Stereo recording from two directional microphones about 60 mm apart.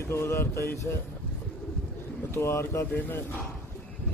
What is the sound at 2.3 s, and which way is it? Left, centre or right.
Speech, left.